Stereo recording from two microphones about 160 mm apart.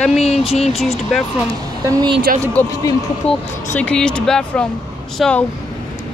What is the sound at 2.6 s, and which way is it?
Speech, 10° left (ahead or behind).